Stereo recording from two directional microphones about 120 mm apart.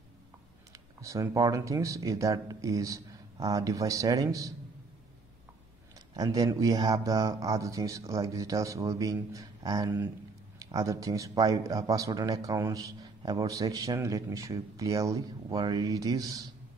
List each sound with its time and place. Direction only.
1.0 s speech: 25° right (ahead or behind)
6.1 s speech: 30° right (ahead or behind)